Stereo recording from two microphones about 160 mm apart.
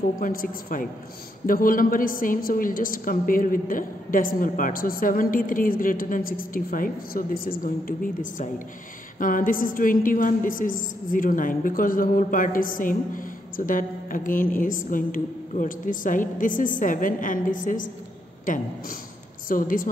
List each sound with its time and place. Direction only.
0.2 s a woman's voice: 60° left (ahead or behind)